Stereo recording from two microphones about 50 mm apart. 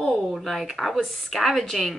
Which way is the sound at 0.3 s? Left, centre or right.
Centre.